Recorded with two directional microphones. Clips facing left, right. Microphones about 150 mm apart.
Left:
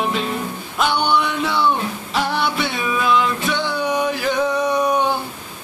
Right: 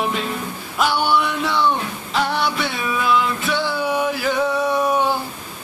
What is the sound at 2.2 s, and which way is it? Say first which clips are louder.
Music: even; centre (ahead or behind).